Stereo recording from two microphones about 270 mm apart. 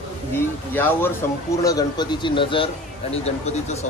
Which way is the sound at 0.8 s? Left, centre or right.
Centre.